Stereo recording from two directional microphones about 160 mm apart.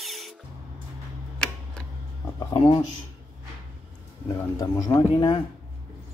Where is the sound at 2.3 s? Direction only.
30° left (ahead or behind).